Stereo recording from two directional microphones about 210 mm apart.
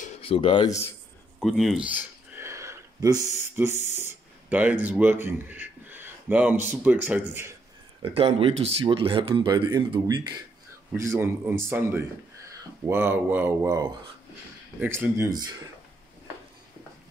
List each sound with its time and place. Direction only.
0.0 s speech: 25° left (ahead or behind)
1.4 s a sound: centre (ahead or behind)
4.5 s speech: 5° right (ahead or behind)
8.0 s speech: 25° right (ahead or behind)